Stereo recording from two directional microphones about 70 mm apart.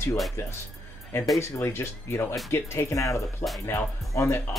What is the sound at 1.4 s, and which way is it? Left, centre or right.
Speech, left.